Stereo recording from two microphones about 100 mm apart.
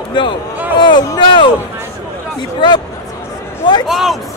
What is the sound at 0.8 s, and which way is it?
Speech, 50° left (ahead or behind).